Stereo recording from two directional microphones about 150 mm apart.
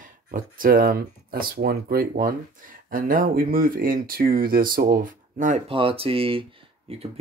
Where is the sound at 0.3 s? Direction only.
70° right (ahead or behind).